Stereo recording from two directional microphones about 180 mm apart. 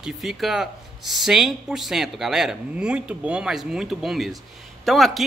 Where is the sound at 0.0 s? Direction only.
Centre (ahead or behind).